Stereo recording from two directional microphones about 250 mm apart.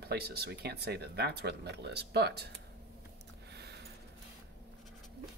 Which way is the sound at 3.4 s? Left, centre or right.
Right.